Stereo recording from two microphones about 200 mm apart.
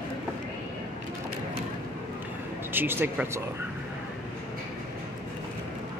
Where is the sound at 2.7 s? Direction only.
10° right (ahead or behind).